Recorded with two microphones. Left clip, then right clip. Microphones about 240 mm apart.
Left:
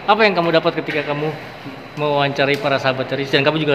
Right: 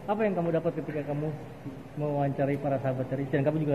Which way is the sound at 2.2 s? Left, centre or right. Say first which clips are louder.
Left 12 dB; left.